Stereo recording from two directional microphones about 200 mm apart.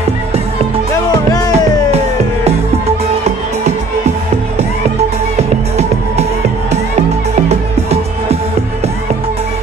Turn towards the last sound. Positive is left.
turn(degrees=-30)  # may be behind; listen again after turning